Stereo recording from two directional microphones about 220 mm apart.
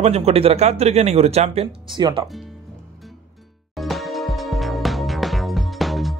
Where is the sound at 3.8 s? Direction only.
Centre (ahead or behind).